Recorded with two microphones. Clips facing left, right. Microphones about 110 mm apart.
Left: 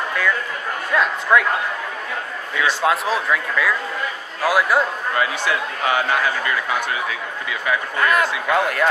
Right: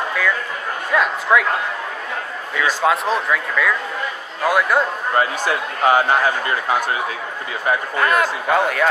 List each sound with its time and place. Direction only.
0.9 s speech: centre (ahead or behind)
2.8 s speech: centre (ahead or behind)
5.1 s a man's voice: 45° right (ahead or behind)
8.0 s speech: centre (ahead or behind)